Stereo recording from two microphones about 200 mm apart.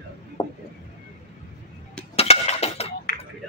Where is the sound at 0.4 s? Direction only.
20° left (ahead or behind).